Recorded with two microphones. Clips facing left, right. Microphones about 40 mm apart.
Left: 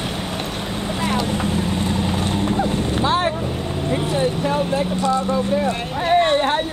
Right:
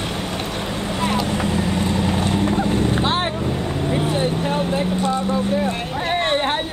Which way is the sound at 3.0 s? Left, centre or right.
Right.